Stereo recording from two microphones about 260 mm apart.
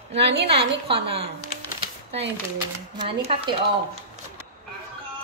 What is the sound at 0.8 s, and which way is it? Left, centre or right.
Speech, right.